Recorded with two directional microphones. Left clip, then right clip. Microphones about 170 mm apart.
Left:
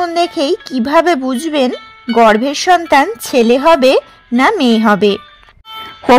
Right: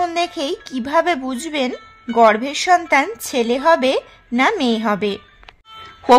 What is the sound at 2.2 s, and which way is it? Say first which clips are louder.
A woman's voice: left 4 dB; 30° left (ahead or behind).